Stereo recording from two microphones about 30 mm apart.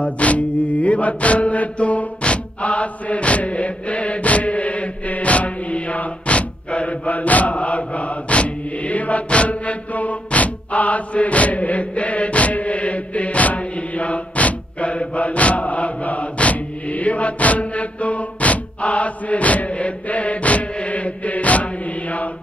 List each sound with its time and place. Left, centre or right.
0.0 s mantra: left
1.8 s music: left
2.2 s chant: left